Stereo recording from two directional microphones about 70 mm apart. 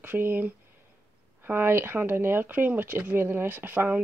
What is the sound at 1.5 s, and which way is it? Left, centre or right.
Speech, right.